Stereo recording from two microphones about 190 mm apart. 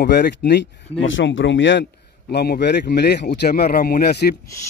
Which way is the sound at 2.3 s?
55° left (ahead or behind).